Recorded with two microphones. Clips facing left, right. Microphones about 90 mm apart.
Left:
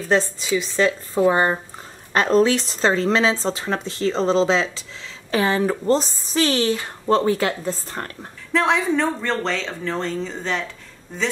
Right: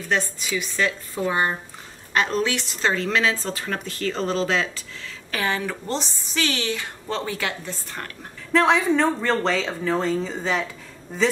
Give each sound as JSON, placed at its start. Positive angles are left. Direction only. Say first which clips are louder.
{"t": 0.1, "sound": "a woman's voice", "louder": "left 5 dB", "side_deg": 30}
{"t": 8.5, "sound": "speech", "louder": "right 1 dB", "side_deg": 0}